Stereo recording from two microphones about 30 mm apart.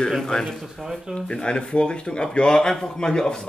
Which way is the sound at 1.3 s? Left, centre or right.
Left.